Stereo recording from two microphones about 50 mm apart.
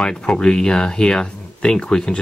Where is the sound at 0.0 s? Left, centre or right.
Centre.